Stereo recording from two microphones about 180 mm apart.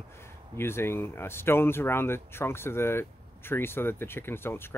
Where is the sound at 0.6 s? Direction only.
15° left (ahead or behind).